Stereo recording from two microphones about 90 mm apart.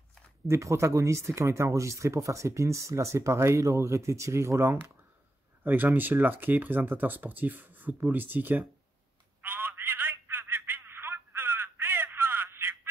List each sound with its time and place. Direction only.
0.5 s speech: 35° right (ahead or behind)
9.4 s telephone: 20° right (ahead or behind)